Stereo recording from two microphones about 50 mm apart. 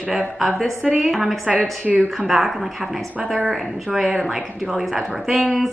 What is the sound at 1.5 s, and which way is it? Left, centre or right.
Speech, right.